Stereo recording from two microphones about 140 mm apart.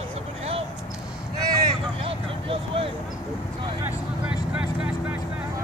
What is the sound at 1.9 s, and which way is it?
Vehicle, 40° right (ahead or behind).